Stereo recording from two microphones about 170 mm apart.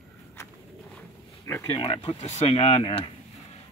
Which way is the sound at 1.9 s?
35° left (ahead or behind).